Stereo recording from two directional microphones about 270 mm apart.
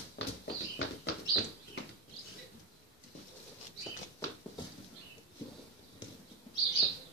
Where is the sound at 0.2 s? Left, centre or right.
Left.